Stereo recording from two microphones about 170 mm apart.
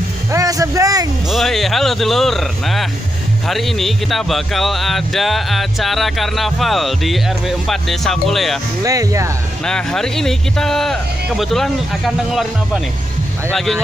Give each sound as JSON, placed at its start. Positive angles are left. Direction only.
{"t": 0.3, "sound": "music", "side_deg": -20}
{"t": 1.3, "sound": "speech", "side_deg": 0}
{"t": 8.8, "sound": "speech", "side_deg": -20}
{"t": 9.7, "sound": "speech", "side_deg": 5}